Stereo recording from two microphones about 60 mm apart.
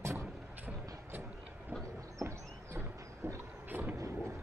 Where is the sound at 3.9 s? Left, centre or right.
Right.